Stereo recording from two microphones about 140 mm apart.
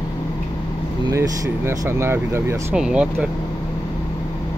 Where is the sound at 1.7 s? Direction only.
20° right (ahead or behind).